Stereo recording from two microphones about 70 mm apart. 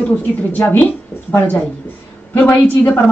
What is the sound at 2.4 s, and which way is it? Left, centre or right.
Speech, left.